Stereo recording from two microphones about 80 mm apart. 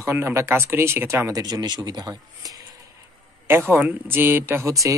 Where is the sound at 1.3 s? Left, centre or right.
Right.